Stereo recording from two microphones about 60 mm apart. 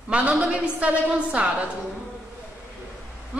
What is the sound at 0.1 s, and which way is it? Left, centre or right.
A woman's voice, centre.